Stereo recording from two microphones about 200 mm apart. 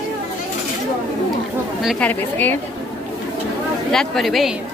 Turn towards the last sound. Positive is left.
turn(degrees=0)  # may be behind; listen again after turning